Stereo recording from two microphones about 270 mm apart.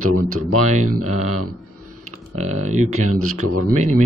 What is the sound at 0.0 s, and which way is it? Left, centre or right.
Speech, right.